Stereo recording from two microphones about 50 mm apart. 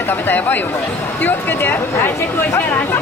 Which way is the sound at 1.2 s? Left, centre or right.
Left.